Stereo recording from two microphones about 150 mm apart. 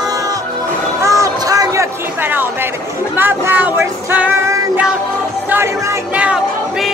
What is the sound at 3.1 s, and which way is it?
Chatter, 15° right (ahead or behind).